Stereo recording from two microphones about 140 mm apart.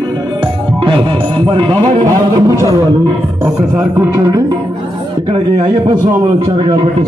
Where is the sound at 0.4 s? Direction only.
35° right (ahead or behind).